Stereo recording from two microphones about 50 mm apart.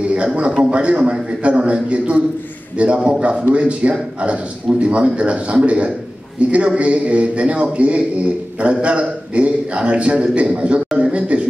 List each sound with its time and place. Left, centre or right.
0.1 s a man's voice: right